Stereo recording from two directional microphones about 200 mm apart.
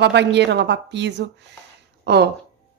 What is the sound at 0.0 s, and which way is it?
Speech, 60° right (ahead or behind).